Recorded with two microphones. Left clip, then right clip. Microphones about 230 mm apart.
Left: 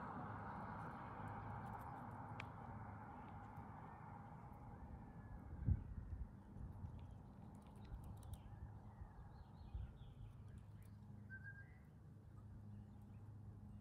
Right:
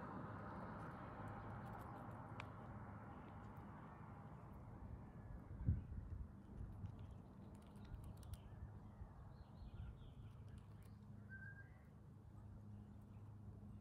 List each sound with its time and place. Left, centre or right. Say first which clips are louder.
0.0 s vehicle: left 2 dB; left